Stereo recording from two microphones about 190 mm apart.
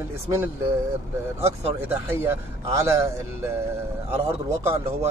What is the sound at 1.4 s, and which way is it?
A man's voice, 15° right (ahead or behind).